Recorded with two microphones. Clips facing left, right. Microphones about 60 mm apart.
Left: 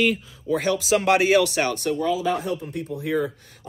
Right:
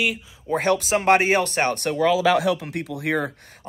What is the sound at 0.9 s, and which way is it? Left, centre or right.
Speech, right.